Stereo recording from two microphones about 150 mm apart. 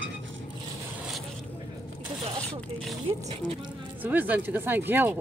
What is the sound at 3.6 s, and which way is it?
Speech, 10° right (ahead or behind).